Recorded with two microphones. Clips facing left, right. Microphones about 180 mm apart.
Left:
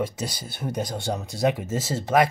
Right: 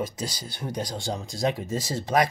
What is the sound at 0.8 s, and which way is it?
Speech, 60° left (ahead or behind).